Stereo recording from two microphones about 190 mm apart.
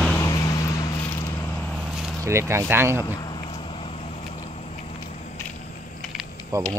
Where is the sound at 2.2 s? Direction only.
15° right (ahead or behind).